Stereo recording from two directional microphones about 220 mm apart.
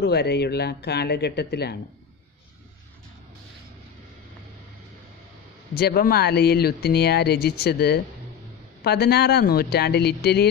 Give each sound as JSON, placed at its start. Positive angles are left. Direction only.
{"t": 0.0, "sound": "speech", "side_deg": 50}
{"t": 5.8, "sound": "speech", "side_deg": 45}